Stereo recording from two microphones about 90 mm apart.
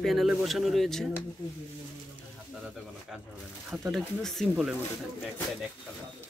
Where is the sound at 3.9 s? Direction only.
5° left (ahead or behind).